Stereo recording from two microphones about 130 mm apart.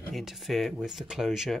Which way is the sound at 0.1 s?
Centre (ahead or behind).